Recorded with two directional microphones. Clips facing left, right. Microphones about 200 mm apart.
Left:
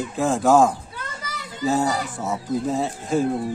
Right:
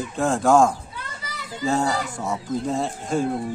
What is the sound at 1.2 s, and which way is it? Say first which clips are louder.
Children playing: left 3 dB; 45° left (ahead or behind).